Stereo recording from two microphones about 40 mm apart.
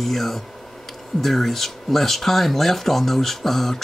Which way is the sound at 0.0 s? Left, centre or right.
Centre.